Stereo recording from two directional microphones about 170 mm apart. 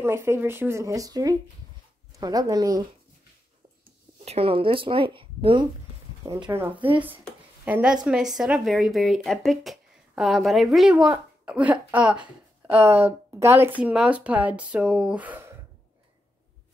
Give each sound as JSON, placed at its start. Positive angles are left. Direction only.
{"t": 0.0, "sound": "speech", "side_deg": -15}
{"t": 4.2, "sound": "speech", "side_deg": -35}
{"t": 6.4, "sound": "a woman's voice", "side_deg": -15}